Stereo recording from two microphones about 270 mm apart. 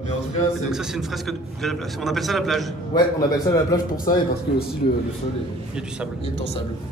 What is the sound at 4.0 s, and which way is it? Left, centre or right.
Speech, left.